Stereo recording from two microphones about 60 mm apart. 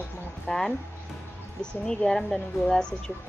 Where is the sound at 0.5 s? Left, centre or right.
Centre.